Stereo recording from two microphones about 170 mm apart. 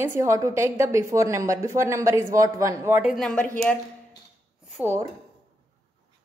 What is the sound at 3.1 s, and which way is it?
Speech, 5° left (ahead or behind).